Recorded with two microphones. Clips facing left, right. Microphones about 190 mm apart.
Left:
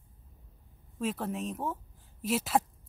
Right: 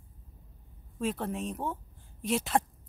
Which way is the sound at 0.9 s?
Centre (ahead or behind).